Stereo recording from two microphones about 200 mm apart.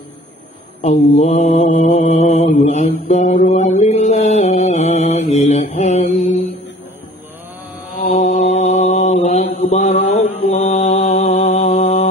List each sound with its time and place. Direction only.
0.7 s mantra: 35° left (ahead or behind)
8.1 s mantra: 30° left (ahead or behind)